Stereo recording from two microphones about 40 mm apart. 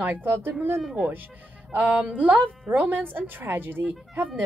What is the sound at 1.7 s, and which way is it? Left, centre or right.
A woman's voice, right.